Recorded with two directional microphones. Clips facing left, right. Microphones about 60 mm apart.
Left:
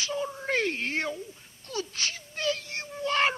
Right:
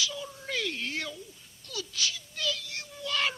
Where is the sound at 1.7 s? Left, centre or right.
Left.